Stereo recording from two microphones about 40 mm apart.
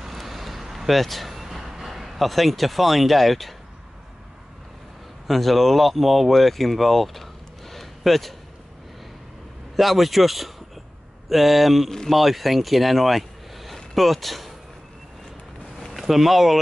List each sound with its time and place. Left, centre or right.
0.0 s vehicle: centre
5.2 s speech: centre
9.8 s speech: centre
15.9 s speech: centre